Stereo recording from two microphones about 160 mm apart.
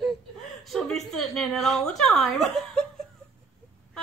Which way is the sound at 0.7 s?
Centre (ahead or behind).